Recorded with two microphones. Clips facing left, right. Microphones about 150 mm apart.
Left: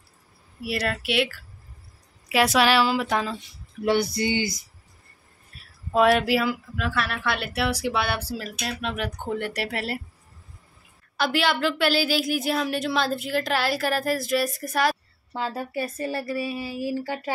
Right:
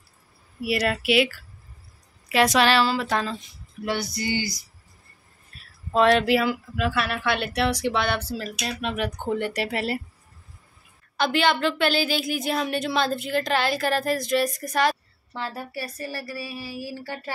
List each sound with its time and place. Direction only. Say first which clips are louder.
0.7 s a woman's voice: right 4 dB; 5° right (ahead or behind)
2.2 s speech: right 1 dB; 5° left (ahead or behind)
3.8 s speech: left 5 dB; 25° left (ahead or behind)
5.9 s a woman's voice: right 1 dB; 5° left (ahead or behind)
11.1 s a woman's voice: right 1 dB; 5° left (ahead or behind)
15.4 s speech: left 4 dB; 20° left (ahead or behind)